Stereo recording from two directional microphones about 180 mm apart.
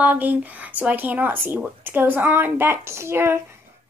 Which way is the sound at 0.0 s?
10° right (ahead or behind).